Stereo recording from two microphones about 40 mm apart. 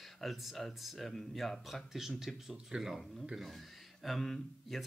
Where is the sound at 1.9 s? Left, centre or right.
Centre.